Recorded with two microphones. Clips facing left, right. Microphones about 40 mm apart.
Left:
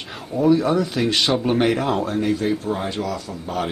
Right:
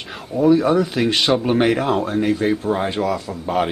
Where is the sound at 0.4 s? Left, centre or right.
Centre.